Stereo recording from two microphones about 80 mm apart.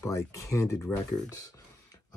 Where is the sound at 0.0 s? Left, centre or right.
Left.